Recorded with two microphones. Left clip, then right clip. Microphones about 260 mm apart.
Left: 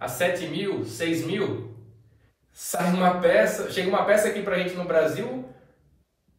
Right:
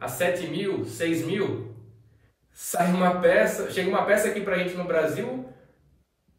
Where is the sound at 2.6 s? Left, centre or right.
Centre.